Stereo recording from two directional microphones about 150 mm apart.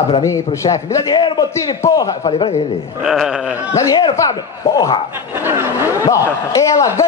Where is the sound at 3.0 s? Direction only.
5° right (ahead or behind).